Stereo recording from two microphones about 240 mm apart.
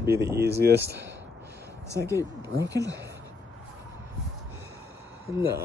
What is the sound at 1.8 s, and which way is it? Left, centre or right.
Speech, centre.